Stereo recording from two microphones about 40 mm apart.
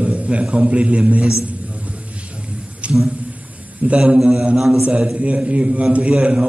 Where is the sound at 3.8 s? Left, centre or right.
Right.